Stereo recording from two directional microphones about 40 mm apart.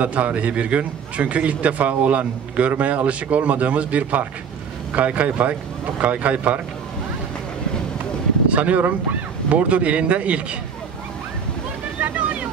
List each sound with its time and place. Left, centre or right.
0.0 s a man's voice: right
8.5 s a man's voice: right